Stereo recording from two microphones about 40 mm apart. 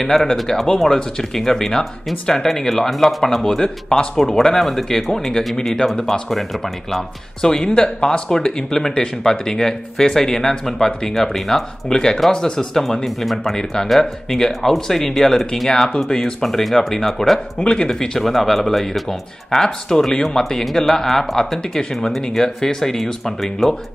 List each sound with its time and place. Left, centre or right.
0.0 s speech: centre
7.4 s speech: centre
17.6 s speech: centre